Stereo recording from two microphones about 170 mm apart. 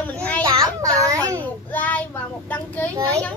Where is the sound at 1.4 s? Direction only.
10° left (ahead or behind).